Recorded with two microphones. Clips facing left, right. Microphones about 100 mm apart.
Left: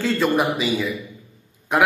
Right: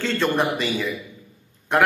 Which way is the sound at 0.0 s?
5° left (ahead or behind).